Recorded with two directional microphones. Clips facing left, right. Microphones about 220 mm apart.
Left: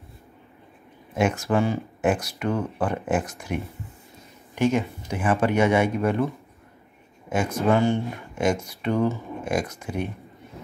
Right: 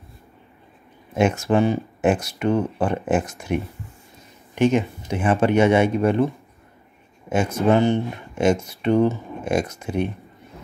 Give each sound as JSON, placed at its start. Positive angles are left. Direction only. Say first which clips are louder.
{"t": 1.1, "sound": "speech", "louder": "right 4 dB", "side_deg": -25}